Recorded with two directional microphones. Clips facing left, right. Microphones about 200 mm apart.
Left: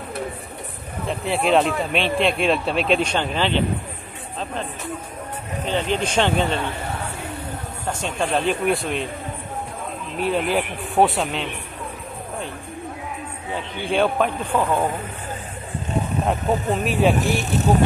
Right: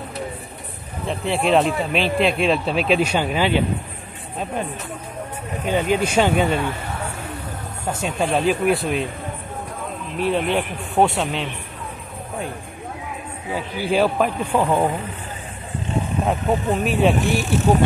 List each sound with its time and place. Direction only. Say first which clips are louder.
1.0 s speech: right 1 dB; centre (ahead or behind)
5.7 s speech: right 3 dB; 10° right (ahead or behind)
8.0 s speech: right 2 dB; 5° right (ahead or behind)
10.1 s speech: right 1 dB; centre (ahead or behind)
13.7 s speech: right 1 dB; 5° right (ahead or behind)
16.3 s speech: right 1 dB; centre (ahead or behind)